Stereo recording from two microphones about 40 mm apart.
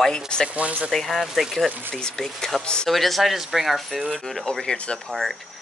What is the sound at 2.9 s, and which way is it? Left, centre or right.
Speech, centre.